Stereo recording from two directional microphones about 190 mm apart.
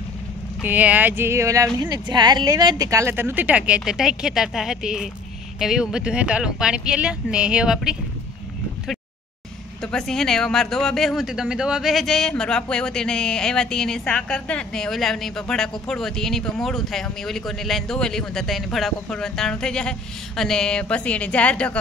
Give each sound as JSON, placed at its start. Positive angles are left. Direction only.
{"t": 0.6, "sound": "a woman's voice", "side_deg": -10}
{"t": 9.8, "sound": "speech", "side_deg": 5}